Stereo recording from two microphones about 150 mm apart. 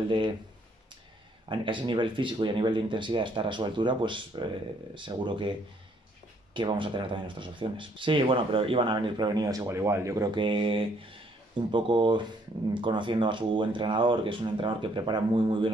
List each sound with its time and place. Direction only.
1.5 s speech: 35° right (ahead or behind)
6.5 s speech: 35° right (ahead or behind)